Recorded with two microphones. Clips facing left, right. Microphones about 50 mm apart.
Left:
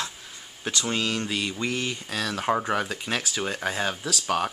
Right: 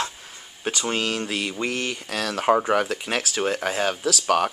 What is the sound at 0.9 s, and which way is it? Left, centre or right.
Speech, right.